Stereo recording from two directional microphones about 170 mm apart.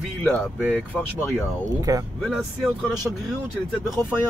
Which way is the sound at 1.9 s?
20° right (ahead or behind).